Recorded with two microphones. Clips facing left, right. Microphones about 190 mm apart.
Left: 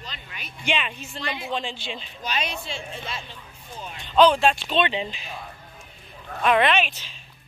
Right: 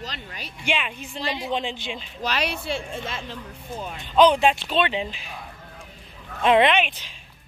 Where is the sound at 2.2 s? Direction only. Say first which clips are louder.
Right 4 dB; 70° right (ahead or behind); by 3.2 s 50° right (ahead or behind).